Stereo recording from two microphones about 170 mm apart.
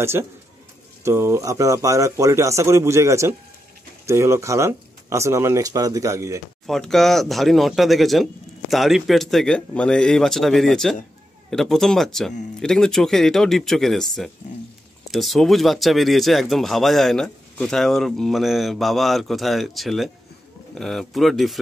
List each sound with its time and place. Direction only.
0.0 s speech: 15° right (ahead or behind)
6.6 s speech: centre (ahead or behind)